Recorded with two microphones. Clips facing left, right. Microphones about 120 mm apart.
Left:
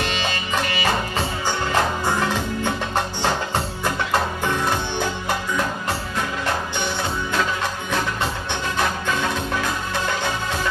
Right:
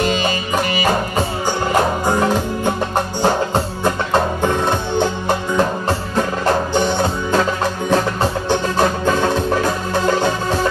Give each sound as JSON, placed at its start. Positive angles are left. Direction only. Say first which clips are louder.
{"t": 2.0, "sound": "music", "louder": "right 6 dB", "side_deg": -45}
{"t": 3.8, "sound": "music", "louder": "right 5 dB", "side_deg": -45}